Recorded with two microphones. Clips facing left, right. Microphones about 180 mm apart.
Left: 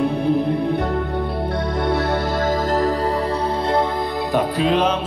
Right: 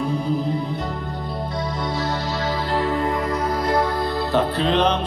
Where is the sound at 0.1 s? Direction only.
60° left (ahead or behind).